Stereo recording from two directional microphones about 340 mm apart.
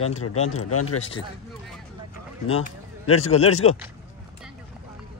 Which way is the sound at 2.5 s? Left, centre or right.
Left.